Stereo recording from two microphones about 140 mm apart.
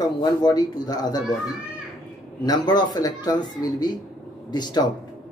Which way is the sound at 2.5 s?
30° left (ahead or behind).